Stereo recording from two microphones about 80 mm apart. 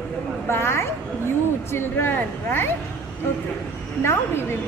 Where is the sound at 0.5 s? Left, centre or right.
Left.